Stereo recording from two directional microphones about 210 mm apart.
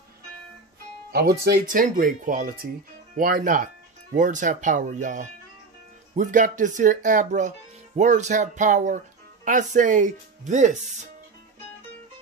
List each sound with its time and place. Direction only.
1.1 s speech: 50° right (ahead or behind); by 10.8 s 35° right (ahead or behind)